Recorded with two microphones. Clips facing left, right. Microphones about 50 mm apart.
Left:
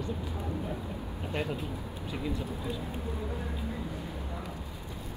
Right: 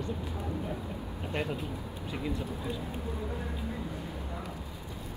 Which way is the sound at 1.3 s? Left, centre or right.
Right.